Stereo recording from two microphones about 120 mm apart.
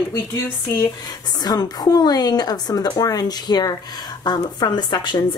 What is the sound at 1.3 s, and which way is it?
A woman's voice, 35° left (ahead or behind).